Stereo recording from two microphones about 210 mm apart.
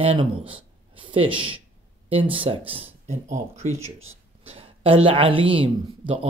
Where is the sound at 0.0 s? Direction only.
30° right (ahead or behind).